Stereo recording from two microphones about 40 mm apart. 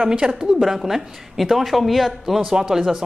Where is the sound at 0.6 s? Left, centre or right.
Centre.